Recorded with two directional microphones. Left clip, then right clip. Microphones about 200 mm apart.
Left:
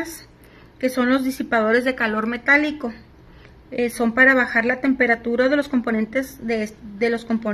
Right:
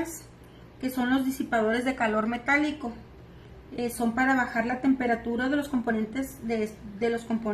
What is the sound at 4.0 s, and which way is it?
A woman's voice, 25° left (ahead or behind).